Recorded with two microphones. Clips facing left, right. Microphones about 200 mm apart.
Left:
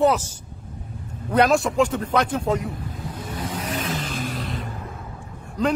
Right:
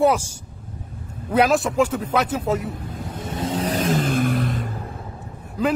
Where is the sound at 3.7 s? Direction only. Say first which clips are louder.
Right 9 dB; 45° right (ahead or behind).